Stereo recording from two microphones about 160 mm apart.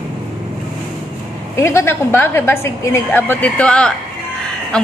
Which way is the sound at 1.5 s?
15° left (ahead or behind).